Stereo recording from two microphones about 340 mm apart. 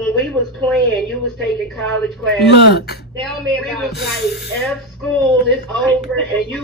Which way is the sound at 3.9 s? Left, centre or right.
Left.